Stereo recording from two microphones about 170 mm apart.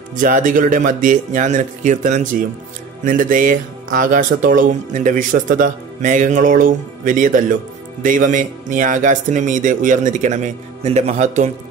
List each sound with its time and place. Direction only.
0.1 s speech: 50° right (ahead or behind)